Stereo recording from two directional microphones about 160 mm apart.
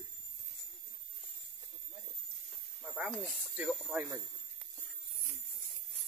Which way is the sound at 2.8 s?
5° right (ahead or behind).